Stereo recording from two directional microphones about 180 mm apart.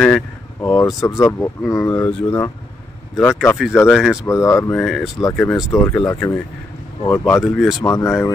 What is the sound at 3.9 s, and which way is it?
Speech, centre (ahead or behind).